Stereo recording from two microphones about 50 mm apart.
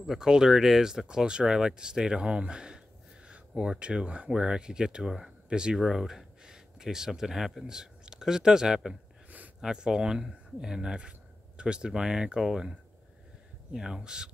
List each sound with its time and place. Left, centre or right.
0.0 s speech: centre
13.7 s speech: centre